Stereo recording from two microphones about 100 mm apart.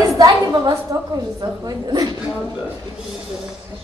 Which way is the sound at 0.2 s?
45° right (ahead or behind).